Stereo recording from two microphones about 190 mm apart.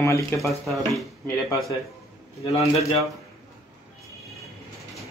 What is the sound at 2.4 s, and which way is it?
Speech, 35° left (ahead or behind).